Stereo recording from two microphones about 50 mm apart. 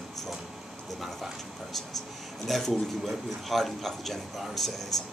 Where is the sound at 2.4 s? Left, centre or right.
Centre.